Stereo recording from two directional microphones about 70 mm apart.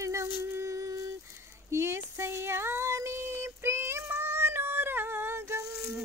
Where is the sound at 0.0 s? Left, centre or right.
Right.